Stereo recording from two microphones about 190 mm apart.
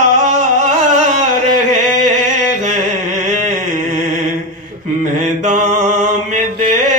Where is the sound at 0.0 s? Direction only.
40° right (ahead or behind).